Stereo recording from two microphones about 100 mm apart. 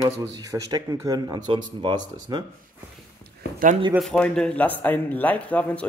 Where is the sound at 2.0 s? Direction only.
45° right (ahead or behind).